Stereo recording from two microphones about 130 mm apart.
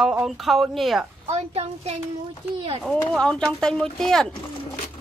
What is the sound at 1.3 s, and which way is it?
Speech, 55° right (ahead or behind).